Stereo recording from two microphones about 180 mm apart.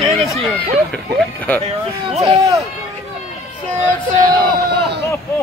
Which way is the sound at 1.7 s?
35° right (ahead or behind).